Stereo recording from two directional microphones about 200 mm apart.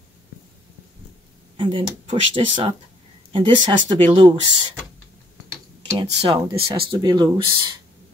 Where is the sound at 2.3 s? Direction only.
25° right (ahead or behind).